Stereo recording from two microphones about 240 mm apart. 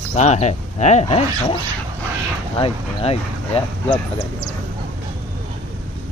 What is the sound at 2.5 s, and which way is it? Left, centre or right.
Speech, left.